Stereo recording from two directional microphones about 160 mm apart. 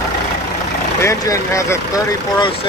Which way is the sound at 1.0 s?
20° left (ahead or behind).